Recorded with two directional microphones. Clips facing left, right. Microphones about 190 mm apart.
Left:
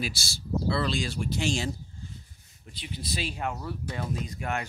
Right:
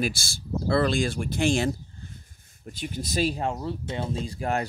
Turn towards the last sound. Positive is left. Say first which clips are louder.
# right 5 dB
turn(degrees=-35)  # may be behind; listen again after turning